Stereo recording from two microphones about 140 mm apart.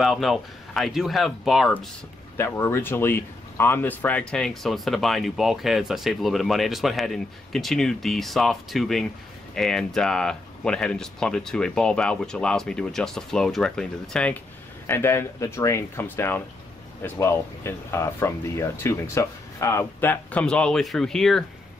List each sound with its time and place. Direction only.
0.0 s speech: centre (ahead or behind)
2.3 s speech: 20° left (ahead or behind)
14.9 s speech: 15° left (ahead or behind)